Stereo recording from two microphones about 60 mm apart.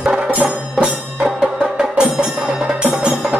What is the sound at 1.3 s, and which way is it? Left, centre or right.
Music, centre.